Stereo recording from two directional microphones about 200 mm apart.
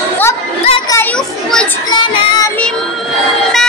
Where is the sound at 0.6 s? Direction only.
25° left (ahead or behind).